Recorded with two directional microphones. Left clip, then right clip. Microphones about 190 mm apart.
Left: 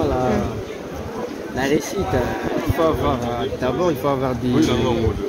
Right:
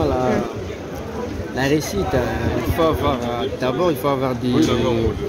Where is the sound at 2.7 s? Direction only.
15° right (ahead or behind).